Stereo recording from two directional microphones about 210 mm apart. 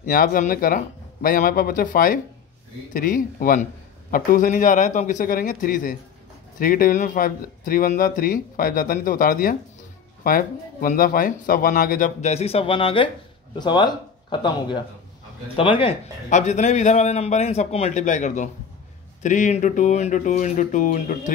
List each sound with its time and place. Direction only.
0.0 s a man's voice: 40° left (ahead or behind)